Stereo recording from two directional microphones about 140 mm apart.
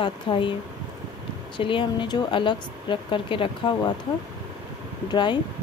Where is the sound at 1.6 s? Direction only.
35° left (ahead or behind).